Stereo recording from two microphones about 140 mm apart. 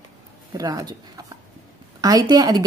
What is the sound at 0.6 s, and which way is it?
A woman's voice, 25° right (ahead or behind).